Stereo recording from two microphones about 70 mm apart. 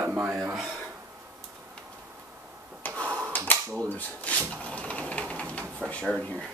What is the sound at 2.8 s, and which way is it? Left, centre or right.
Tick-tock, left.